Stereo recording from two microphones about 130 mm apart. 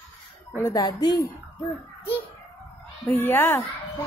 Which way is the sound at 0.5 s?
20° left (ahead or behind).